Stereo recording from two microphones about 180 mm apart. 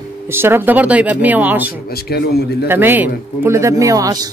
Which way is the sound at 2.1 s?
60° left (ahead or behind).